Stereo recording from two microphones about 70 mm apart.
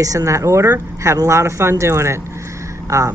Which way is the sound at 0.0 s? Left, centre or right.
Right.